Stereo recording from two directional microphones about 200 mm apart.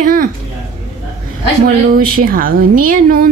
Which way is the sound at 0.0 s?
45° right (ahead or behind).